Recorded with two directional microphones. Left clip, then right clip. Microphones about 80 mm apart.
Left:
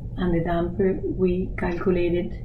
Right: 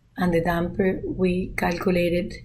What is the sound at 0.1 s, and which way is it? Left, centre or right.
Speech, right.